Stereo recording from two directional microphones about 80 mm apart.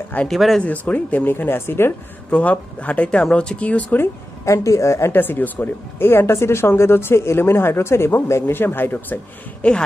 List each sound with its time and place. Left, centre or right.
0.3 s speech: centre
0.6 s speech: centre
2.3 s speech: centre
4.0 s speech: left
5.1 s speech: left
9.6 s speech: centre